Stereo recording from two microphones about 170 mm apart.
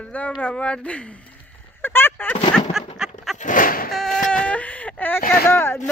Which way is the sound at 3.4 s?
50° left (ahead or behind).